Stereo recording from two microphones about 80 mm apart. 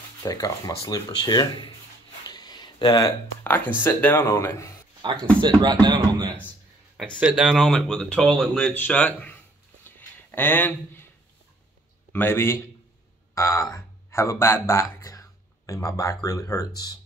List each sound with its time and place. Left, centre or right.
0.2 s speech: left
2.2 s a sound: left
3.4 s speech: left
4.3 s speech: left
5.1 s speech: centre
5.6 s speech: right
7.2 s speech: centre
7.7 s speech: centre
8.7 s speech: left
9.8 s a sound: left
12.1 s speech: left
13.3 s speech: left